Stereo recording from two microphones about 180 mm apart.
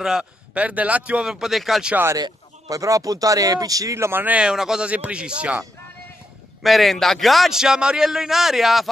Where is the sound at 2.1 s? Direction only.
20° right (ahead or behind).